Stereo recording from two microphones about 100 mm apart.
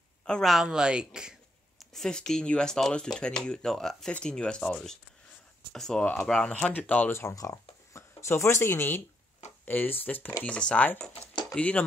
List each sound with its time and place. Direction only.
0.2 s speech: 5° left (ahead or behind)
1.8 s speech: 5° left (ahead or behind)
7.1 s speech: 25° left (ahead or behind)